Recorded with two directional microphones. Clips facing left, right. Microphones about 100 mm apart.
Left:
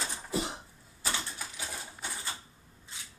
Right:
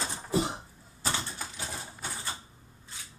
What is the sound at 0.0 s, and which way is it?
Cough, 30° right (ahead or behind).